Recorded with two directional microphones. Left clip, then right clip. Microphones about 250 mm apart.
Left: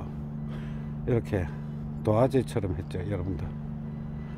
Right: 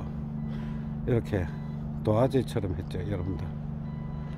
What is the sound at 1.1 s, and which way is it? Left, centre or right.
Speech, centre.